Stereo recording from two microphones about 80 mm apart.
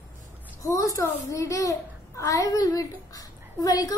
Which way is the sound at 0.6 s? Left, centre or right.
Left.